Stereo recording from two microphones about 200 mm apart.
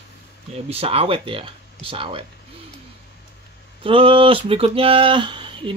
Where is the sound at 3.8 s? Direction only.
25° right (ahead or behind).